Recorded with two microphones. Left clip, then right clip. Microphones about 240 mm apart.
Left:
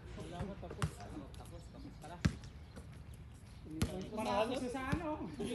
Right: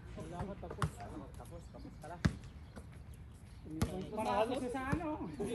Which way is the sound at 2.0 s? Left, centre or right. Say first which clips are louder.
Right 1 dB; centre.